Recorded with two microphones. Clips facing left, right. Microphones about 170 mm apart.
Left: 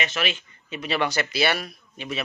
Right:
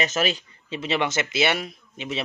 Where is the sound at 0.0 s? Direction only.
40° right (ahead or behind).